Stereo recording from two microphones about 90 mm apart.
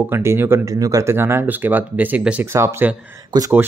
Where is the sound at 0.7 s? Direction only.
40° right (ahead or behind); by 2.4 s 15° right (ahead or behind).